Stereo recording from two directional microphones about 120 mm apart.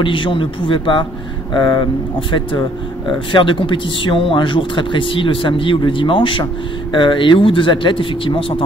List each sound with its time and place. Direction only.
0.0 s speech: 45° left (ahead or behind)